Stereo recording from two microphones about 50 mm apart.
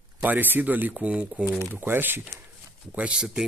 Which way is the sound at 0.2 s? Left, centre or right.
Right.